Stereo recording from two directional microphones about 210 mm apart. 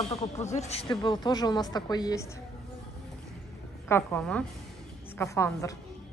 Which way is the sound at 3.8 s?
10° left (ahead or behind).